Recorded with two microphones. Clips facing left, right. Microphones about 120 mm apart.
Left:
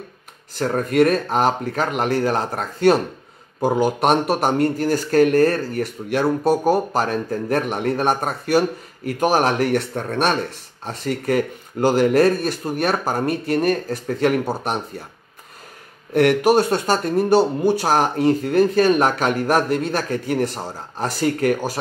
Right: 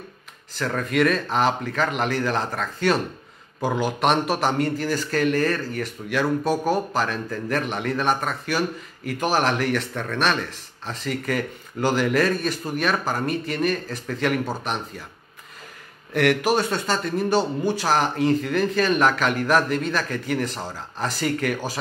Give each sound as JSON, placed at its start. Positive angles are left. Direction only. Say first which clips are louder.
{"t": 0.6, "sound": "speech", "louder": "left 5 dB", "side_deg": 45}
{"t": 16.1, "sound": "speech", "louder": "left 5 dB", "side_deg": 45}